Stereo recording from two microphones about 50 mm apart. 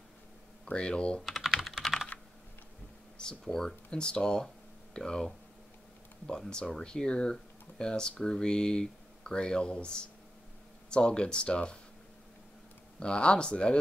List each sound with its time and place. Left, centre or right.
0.7 s speech: left
1.2 s typing: centre
2.1 s computer keyboard: left
3.2 s speech: centre
10.9 s speech: centre
13.0 s speech: centre